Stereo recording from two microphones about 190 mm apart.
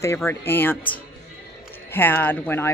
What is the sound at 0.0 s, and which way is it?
Speech, 15° left (ahead or behind).